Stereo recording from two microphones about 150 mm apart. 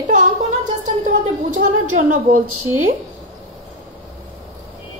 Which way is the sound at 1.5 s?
60° right (ahead or behind).